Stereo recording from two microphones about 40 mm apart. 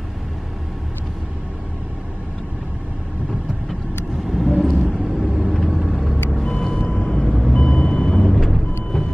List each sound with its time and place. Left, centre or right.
4.3 s vehicle: centre
6.4 s vehicle: centre
7.1 s vehicle: centre
7.5 s vehicle: centre
8.3 s vehicle: centre
8.9 s vehicle: centre